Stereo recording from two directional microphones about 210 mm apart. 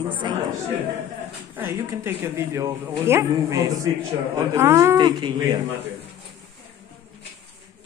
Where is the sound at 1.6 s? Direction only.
10° right (ahead or behind).